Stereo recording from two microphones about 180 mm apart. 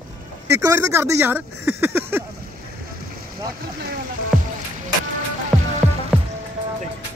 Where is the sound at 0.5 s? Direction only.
15° right (ahead or behind).